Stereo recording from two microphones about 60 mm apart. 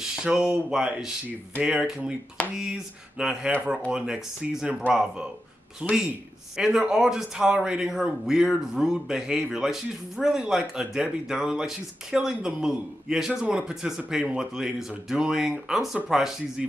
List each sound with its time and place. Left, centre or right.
0.1 s a man's voice: centre
4.6 s a man's voice: right